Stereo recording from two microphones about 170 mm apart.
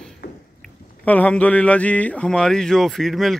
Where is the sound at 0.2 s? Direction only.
70° left (ahead or behind).